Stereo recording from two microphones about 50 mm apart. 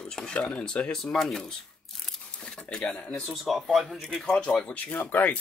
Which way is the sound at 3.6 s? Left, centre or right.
Centre.